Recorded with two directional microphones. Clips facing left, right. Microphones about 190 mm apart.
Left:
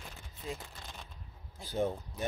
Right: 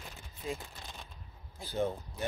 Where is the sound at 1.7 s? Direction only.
15° left (ahead or behind).